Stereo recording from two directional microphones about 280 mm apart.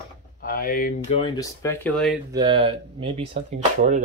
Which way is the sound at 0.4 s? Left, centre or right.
Left.